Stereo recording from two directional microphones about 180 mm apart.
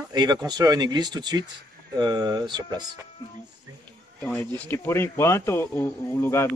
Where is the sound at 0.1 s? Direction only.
20° right (ahead or behind).